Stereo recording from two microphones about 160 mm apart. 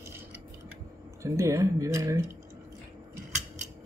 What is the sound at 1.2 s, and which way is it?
Speech, 20° right (ahead or behind).